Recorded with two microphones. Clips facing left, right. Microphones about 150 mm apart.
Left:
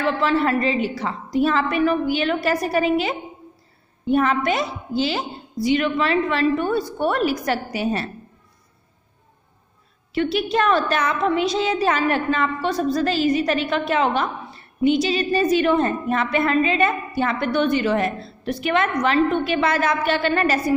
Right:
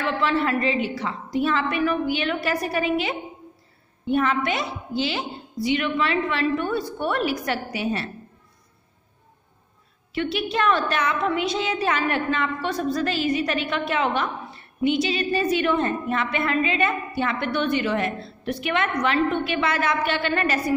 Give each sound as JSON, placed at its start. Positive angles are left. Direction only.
{"t": 0.0, "sound": "a woman's voice", "side_deg": 40}
{"t": 10.1, "sound": "a woman's voice", "side_deg": 40}